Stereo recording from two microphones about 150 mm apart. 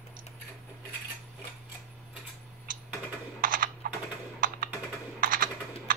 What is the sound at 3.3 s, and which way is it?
Computer keyboard, 70° right (ahead or behind).